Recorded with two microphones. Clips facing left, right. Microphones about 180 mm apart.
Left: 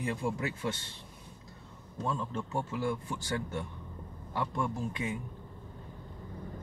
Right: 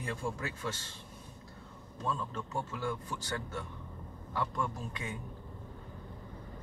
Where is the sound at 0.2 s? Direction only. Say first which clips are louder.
Left 3 dB; 20° left (ahead or behind).